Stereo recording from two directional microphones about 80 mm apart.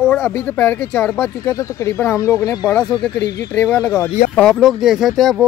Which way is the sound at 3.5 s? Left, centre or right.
Left.